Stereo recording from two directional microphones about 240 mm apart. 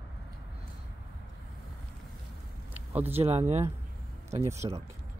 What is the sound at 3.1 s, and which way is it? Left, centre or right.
Speech, right.